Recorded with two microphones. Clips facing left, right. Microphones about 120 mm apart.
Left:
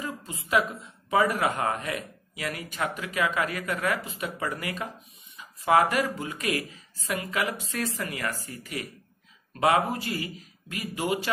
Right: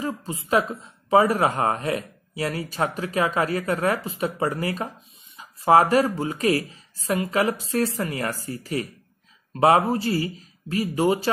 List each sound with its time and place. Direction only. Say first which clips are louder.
0.0 s a woman's voice: right 7 dB; 30° right (ahead or behind)